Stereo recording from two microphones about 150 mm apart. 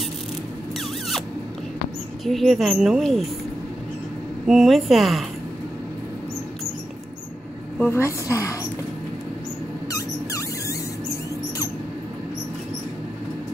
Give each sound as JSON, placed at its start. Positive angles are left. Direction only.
{"t": 2.2, "sound": "speech", "side_deg": 0}
{"t": 4.5, "sound": "speech", "side_deg": 0}
{"t": 7.8, "sound": "a woman's voice", "side_deg": 15}
{"t": 9.8, "sound": "a sound", "side_deg": 20}